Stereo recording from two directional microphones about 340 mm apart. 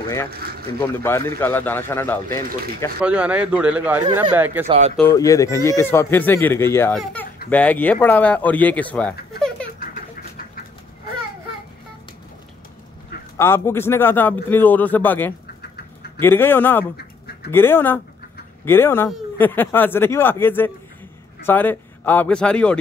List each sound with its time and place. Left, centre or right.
0.7 s a man's voice: centre
4.6 s speech: centre
4.9 s a man's voice: centre
13.4 s a man's voice: centre